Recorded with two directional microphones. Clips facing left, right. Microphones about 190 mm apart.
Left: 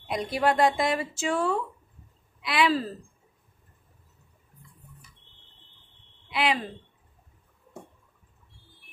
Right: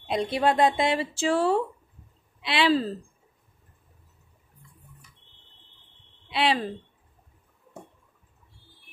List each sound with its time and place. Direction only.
0.0 s speech: 25° right (ahead or behind)
6.3 s a woman's voice: 30° right (ahead or behind)